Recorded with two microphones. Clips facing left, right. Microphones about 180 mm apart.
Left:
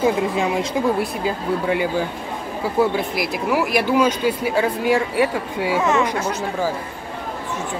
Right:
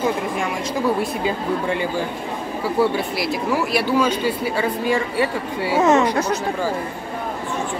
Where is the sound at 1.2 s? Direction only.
10° left (ahead or behind).